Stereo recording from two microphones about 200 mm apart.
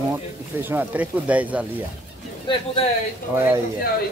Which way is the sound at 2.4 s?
30° left (ahead or behind).